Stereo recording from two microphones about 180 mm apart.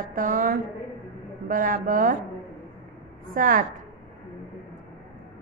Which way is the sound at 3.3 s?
50° right (ahead or behind).